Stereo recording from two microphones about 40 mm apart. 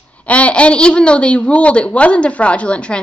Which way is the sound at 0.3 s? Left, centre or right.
Left.